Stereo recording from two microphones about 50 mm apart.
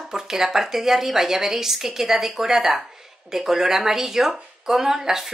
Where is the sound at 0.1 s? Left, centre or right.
Centre.